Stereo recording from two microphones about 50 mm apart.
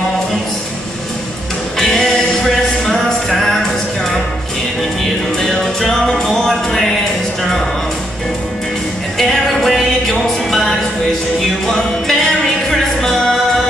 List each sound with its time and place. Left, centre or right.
1.8 s music: centre
5.4 s music: centre
9.2 s music: centre